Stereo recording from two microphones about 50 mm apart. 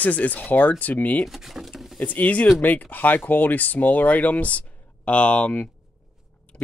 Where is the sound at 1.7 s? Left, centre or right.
Centre.